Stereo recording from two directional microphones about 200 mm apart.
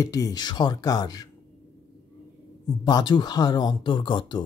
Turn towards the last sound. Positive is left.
turn(degrees=25)  # may be behind; listen again after turning